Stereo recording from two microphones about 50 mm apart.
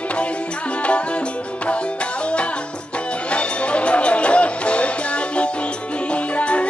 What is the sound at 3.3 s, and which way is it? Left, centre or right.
Music, left.